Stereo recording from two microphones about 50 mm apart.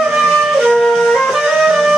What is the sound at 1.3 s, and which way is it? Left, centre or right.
Music, centre.